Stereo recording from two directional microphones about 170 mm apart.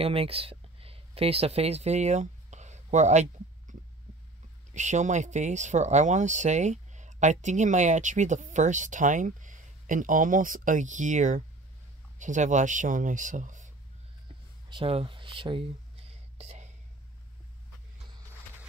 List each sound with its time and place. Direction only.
0.0 s speech: 35° right (ahead or behind)
4.7 s speech: 45° right (ahead or behind)
14.7 s a sound: 30° right (ahead or behind)